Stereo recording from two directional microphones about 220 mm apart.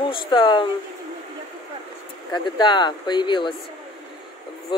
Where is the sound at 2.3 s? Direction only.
20° left (ahead or behind).